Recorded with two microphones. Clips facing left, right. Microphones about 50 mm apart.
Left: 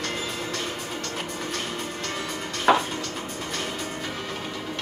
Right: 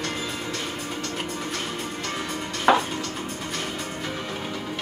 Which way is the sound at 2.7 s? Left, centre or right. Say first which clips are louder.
Right 1 dB; centre.